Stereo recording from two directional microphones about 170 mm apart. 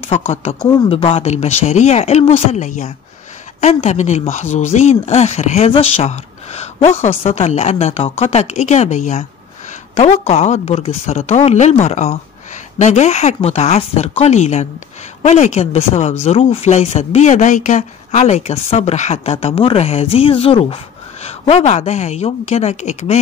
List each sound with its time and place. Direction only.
0.3 s speech: 40° left (ahead or behind)